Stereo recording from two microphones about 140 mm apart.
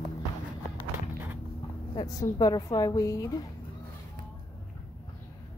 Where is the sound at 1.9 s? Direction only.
25° left (ahead or behind).